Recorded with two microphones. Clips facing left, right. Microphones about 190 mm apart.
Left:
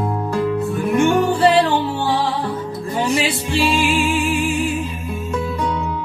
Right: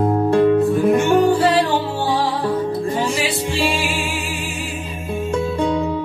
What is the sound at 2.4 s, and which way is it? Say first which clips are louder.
Music: right 5 dB; 25° right (ahead or behind).